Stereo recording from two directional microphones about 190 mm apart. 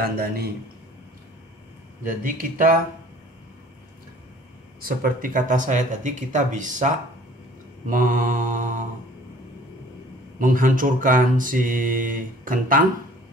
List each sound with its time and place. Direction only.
0.0 s mantra: 55° right (ahead or behind)
2.0 s mantra: 45° right (ahead or behind)
4.8 s speech: 45° right (ahead or behind)
7.9 s mantra: 45° right (ahead or behind)
10.4 s mantra: 45° right (ahead or behind)